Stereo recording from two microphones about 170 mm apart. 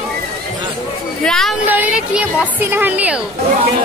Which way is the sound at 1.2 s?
5° left (ahead or behind).